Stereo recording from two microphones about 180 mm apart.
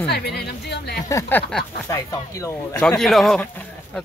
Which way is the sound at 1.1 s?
15° left (ahead or behind).